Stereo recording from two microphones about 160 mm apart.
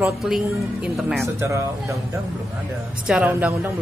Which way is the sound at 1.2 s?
20° right (ahead or behind).